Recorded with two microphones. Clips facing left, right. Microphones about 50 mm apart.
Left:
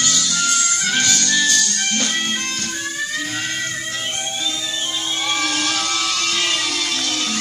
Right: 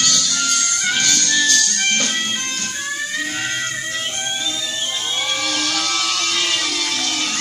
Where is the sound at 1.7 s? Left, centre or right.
Right.